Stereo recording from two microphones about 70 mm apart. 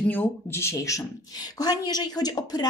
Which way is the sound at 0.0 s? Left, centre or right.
Left.